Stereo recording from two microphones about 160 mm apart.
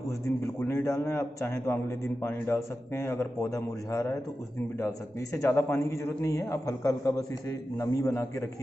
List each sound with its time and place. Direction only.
0.2 s a man's voice: 15° left (ahead or behind)